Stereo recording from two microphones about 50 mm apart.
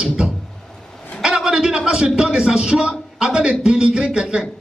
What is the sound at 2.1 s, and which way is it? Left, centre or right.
A man's voice, centre.